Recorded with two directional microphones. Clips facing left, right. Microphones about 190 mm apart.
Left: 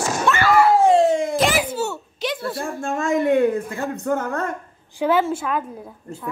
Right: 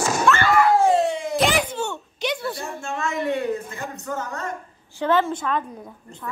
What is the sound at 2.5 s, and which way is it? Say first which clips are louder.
Speech: left 5 dB; 50° left (ahead or behind).